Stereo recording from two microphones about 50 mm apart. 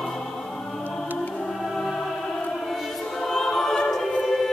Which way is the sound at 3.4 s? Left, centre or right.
Centre.